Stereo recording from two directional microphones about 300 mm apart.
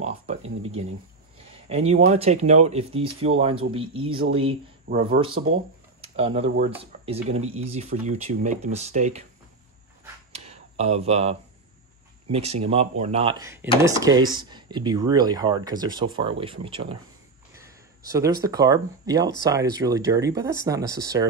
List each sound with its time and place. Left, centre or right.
0.3 s a sound: right
1.7 s speech: right
4.9 s speech: right
5.9 s speech: centre
10.3 s a sound: right
12.3 s speech: right